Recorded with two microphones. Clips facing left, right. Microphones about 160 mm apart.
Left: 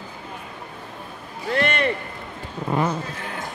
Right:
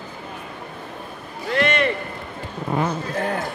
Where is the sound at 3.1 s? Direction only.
50° right (ahead or behind).